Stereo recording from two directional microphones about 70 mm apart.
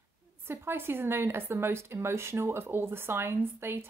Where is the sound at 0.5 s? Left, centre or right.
Right.